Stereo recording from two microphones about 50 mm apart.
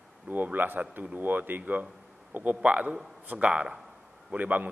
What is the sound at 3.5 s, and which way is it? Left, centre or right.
Speech, centre.